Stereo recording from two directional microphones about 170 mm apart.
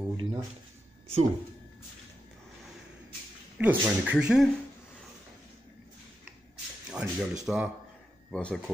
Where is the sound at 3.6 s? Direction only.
10° right (ahead or behind).